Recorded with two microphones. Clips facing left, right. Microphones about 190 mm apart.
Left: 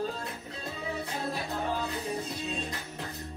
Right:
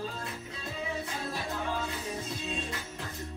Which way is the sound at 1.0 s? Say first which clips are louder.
Left 2 dB; 35° left (ahead or behind).